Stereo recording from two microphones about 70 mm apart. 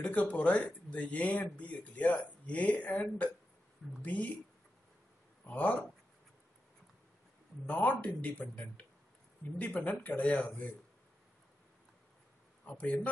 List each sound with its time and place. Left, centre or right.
0.0 s speech: left
5.4 s speech: left
7.6 s speech: left
12.6 s speech: left